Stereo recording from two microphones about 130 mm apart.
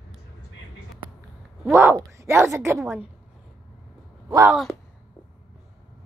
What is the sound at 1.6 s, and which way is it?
A woman's voice, 15° right (ahead or behind).